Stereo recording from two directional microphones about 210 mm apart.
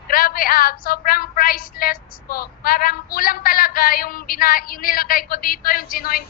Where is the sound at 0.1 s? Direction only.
45° left (ahead or behind).